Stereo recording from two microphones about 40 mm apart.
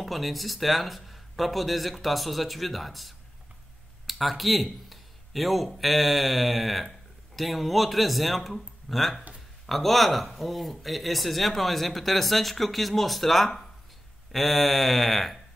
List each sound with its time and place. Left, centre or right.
0.0 s speech: centre